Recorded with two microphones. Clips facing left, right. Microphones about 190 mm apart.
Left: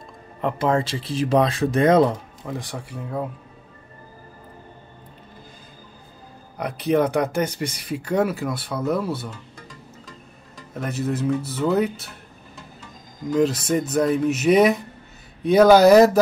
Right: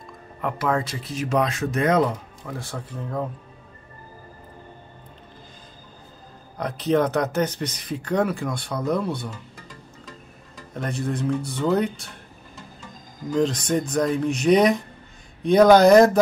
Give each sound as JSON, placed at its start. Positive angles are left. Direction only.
{"t": 0.4, "sound": "speech", "side_deg": 25}
{"t": 2.5, "sound": "speech", "side_deg": 15}
{"t": 6.6, "sound": "speech", "side_deg": 10}
{"t": 10.7, "sound": "speech", "side_deg": 5}
{"t": 13.3, "sound": "speech", "side_deg": 5}